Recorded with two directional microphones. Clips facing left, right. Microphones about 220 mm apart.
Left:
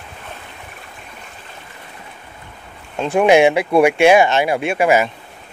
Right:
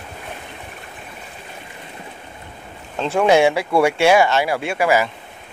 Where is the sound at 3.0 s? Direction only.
15° left (ahead or behind).